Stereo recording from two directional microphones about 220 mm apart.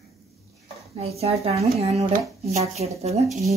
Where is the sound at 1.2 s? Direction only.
30° right (ahead or behind).